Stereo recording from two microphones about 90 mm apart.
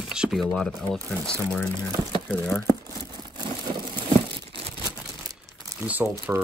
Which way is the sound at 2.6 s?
45° right (ahead or behind).